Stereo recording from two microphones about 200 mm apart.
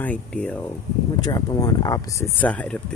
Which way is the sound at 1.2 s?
15° left (ahead or behind).